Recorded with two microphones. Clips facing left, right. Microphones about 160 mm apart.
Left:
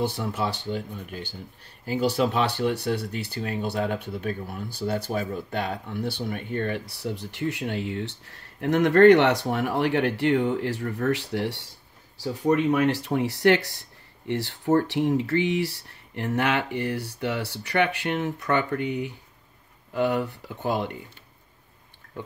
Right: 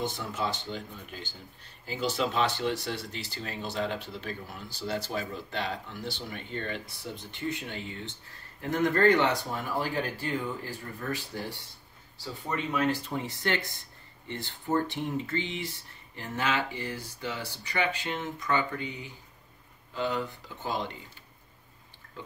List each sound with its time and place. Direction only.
0.0 s speech: 60° left (ahead or behind)